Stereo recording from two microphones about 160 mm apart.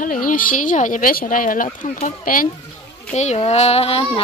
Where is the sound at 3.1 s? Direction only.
45° left (ahead or behind).